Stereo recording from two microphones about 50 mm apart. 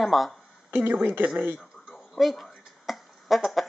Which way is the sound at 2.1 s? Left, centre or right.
Centre.